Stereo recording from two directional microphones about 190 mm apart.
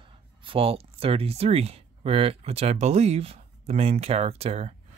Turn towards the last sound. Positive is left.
turn(degrees=-30)  # may be behind; listen again after turning